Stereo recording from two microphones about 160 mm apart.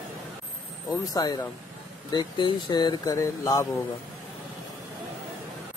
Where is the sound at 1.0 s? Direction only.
25° left (ahead or behind).